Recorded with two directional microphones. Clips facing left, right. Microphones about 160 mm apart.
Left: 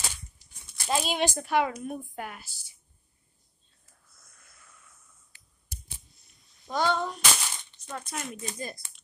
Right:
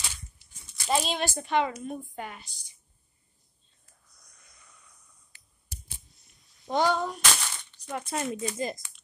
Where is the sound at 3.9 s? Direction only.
Centre (ahead or behind).